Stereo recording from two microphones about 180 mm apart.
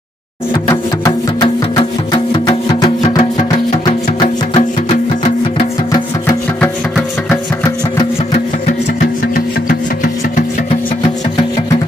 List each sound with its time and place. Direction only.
0.7 s music: 25° left (ahead or behind)
5.9 s music: 20° left (ahead or behind)
6.6 s music: 10° left (ahead or behind)
9.3 s music: 50° left (ahead or behind)